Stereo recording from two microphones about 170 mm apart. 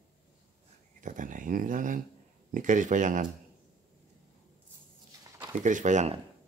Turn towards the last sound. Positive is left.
turn(degrees=-45)  # may be behind; listen again after turning